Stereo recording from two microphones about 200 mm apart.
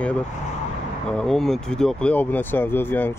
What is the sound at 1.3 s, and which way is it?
Speech, centre (ahead or behind).